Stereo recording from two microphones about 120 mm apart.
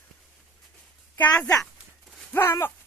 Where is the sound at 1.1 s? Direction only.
10° left (ahead or behind).